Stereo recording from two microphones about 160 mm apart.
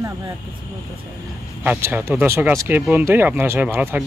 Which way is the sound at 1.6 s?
10° right (ahead or behind).